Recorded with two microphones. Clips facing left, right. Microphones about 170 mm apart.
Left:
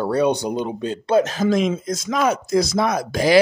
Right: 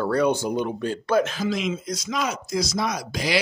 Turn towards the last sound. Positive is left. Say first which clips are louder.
# left 10 dB
turn(degrees=50)  # may be behind; listen again after turning